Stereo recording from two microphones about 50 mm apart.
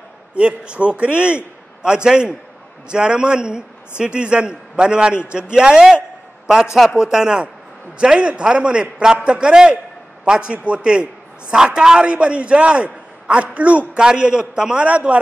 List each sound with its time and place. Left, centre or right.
0.3 s a man's voice: right
13.9 s a man's voice: centre